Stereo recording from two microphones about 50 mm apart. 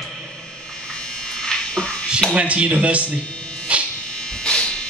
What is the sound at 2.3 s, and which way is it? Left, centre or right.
Speech, right.